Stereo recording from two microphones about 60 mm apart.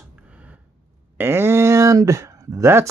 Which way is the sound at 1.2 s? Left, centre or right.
Right.